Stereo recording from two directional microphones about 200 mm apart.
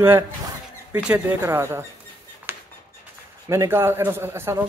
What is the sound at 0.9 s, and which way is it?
Speech, 10° right (ahead or behind).